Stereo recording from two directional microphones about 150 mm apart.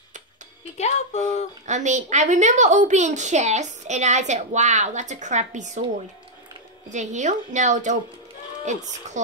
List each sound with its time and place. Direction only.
0.7 s speech: 50° left (ahead or behind)
1.7 s a woman's voice: 55° right (ahead or behind)
6.9 s a woman's voice: 55° right (ahead or behind)